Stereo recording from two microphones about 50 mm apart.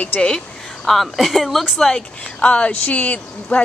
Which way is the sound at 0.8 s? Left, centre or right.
Centre.